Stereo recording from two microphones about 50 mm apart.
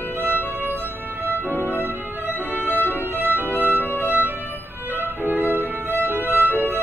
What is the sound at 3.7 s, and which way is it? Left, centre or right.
Music, left.